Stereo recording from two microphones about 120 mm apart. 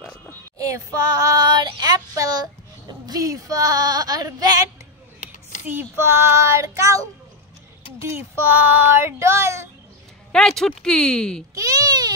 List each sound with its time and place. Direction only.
0.6 s child singing: 30° right (ahead or behind)
5.7 s child singing: 20° right (ahead or behind)
8.5 s child singing: 15° right (ahead or behind)
10.3 s speech: 5° left (ahead or behind)
11.5 s baby cry: 30° right (ahead or behind)